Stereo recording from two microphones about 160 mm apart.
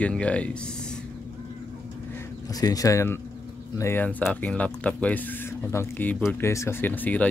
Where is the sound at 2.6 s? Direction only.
25° left (ahead or behind).